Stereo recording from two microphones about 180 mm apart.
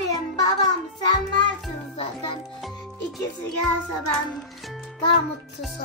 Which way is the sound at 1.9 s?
30° left (ahead or behind).